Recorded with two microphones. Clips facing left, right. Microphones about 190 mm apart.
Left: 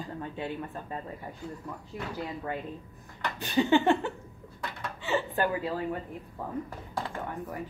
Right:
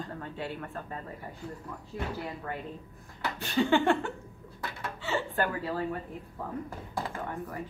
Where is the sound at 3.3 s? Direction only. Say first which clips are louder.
Left 2 dB; 15° left (ahead or behind).